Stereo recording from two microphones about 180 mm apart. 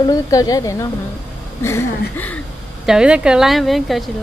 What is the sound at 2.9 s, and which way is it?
A woman's voice, 5° right (ahead or behind).